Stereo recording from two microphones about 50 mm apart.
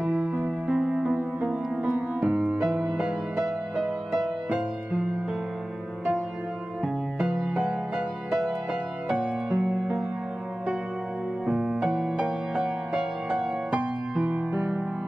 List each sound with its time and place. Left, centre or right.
0.0 s music: centre
3.7 s music: centre
7.2 s music: centre
9.1 s music: right
11.4 s music: centre